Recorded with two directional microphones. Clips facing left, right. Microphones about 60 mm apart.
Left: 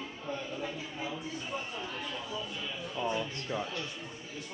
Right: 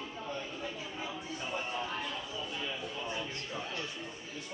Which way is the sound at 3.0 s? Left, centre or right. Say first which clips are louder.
Left 5 dB; left.